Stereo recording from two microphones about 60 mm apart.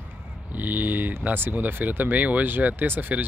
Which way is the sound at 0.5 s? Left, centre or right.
Right.